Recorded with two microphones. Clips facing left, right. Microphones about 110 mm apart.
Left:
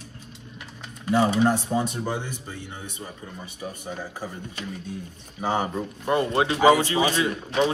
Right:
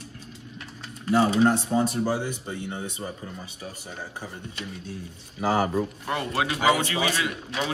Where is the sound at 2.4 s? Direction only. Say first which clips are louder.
Right 5 dB; 25° right (ahead or behind).